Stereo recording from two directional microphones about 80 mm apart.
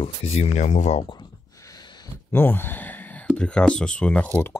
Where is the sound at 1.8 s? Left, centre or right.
Left.